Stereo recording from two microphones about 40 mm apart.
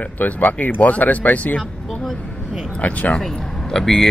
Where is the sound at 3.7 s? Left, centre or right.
Centre.